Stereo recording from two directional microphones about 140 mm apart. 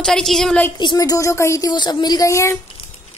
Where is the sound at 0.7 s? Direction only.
30° left (ahead or behind).